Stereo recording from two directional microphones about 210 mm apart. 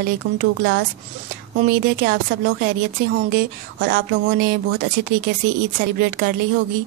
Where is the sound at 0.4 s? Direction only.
50° right (ahead or behind).